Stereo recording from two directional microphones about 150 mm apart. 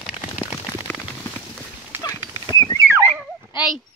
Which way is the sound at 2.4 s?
20° left (ahead or behind).